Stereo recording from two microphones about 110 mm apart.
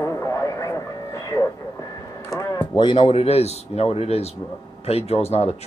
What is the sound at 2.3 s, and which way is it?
Speech, 40° left (ahead or behind).